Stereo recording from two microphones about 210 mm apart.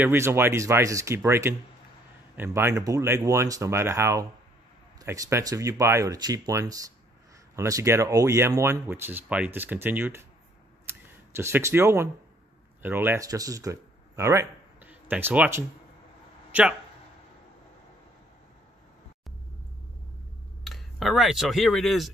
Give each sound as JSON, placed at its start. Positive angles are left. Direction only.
{"t": 0.0, "sound": "speech", "side_deg": -10}
{"t": 10.9, "sound": "camera", "side_deg": -10}
{"t": 12.8, "sound": "speech", "side_deg": -10}
{"t": 20.6, "sound": "speech", "side_deg": 0}